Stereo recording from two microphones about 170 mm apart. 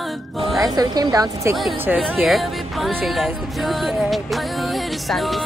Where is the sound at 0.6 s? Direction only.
25° right (ahead or behind).